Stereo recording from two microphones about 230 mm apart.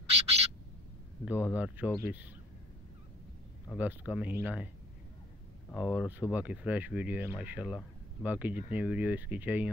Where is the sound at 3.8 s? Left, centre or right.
Centre.